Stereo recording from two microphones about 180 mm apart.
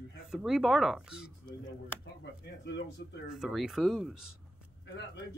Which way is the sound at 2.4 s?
70° left (ahead or behind).